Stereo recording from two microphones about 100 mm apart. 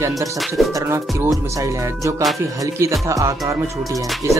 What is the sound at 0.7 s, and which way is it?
Speech, 30° right (ahead or behind).